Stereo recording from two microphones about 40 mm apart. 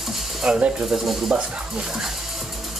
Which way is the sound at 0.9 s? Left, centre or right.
Centre.